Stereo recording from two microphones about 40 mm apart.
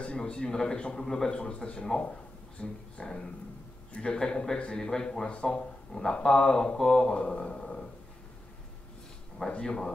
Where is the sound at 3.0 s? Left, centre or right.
Left.